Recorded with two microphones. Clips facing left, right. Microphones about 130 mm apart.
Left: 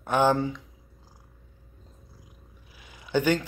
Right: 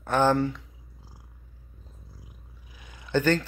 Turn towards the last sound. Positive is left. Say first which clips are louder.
# even
turn(degrees=10)  # may be behind; listen again after turning